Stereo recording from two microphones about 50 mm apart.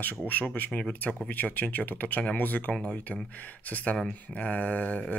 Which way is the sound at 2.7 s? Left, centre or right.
Centre.